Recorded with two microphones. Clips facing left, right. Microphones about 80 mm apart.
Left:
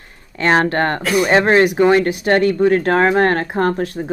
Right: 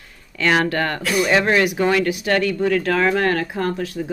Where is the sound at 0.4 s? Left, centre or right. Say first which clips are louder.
Left 3 dB; left.